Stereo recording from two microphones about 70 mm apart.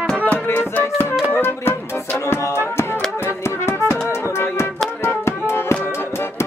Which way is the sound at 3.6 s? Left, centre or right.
Left.